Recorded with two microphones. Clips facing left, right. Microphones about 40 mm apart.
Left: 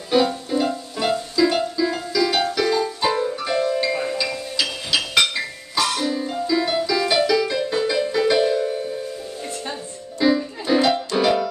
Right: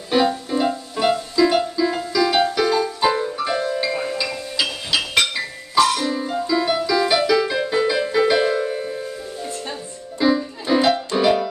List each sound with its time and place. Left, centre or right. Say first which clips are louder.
0.1 s music: even; centre
4.9 s chink: right 1 dB; centre
5.3 s music: right 4 dB; centre
10.2 s music: even; centre